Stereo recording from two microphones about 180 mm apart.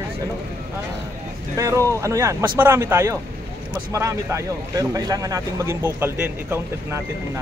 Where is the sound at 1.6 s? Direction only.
15° right (ahead or behind).